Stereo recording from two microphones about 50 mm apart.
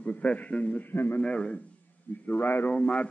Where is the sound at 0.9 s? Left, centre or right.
Left.